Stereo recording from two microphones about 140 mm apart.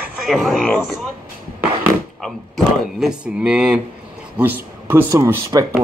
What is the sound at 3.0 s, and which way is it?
Speech, 5° right (ahead or behind).